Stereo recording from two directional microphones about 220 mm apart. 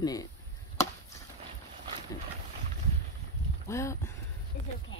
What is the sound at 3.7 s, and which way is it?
Speech, 15° left (ahead or behind).